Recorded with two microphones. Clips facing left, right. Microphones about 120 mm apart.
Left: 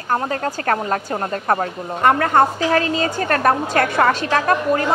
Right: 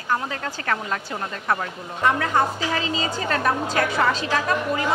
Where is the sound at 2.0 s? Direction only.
55° left (ahead or behind).